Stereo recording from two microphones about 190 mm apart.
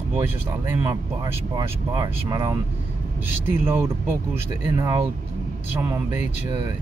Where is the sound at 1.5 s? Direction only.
20° right (ahead or behind).